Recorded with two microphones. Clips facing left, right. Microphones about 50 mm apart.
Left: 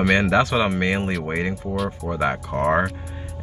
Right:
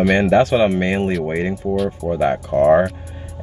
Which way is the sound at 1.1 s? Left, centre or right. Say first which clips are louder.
Right 4 dB; centre.